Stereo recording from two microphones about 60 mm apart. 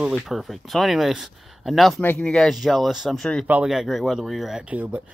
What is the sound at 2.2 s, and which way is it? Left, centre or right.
Speech, centre.